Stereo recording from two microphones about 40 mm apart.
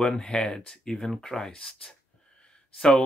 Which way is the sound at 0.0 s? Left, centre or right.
Centre.